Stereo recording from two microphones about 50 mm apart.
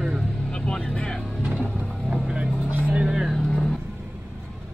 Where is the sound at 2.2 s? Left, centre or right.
Centre.